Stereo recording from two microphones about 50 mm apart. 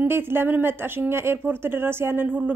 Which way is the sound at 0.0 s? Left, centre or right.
Right.